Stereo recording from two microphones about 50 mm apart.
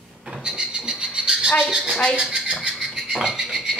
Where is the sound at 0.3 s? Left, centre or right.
Centre.